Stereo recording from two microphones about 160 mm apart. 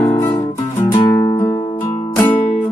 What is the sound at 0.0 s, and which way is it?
Music, 20° left (ahead or behind).